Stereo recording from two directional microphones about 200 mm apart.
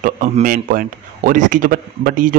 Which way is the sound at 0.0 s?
40° right (ahead or behind).